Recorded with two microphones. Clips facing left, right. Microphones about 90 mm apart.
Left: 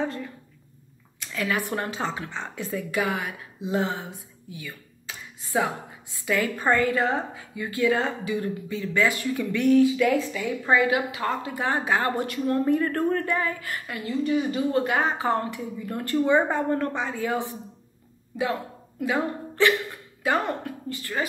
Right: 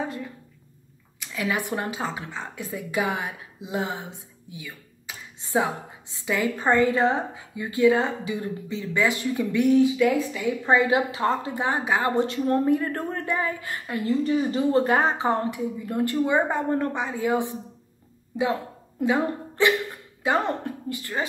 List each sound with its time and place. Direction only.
0.0 s a woman's voice: 10° right (ahead or behind)
10.7 s speech: 25° right (ahead or behind)
11.6 s a woman's voice: 15° right (ahead or behind)
12.2 s speech: 30° right (ahead or behind)
12.6 s a woman's voice: 15° right (ahead or behind); by 15.1 s 35° right (ahead or behind)
15.1 s a woman's voice: 20° right (ahead or behind)